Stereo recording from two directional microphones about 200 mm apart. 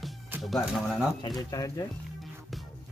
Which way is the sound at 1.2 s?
20° left (ahead or behind).